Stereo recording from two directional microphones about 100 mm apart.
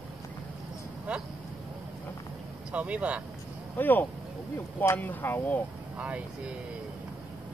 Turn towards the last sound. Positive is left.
turn(degrees=-15)  # may be behind; listen again after turning